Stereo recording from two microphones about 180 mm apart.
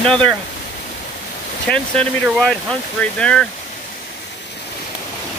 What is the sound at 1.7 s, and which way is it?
Speech, centre (ahead or behind).